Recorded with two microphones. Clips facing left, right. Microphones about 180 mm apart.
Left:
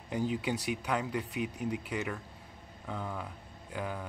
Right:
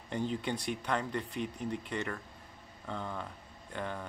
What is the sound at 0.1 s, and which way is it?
Speech, 5° left (ahead or behind).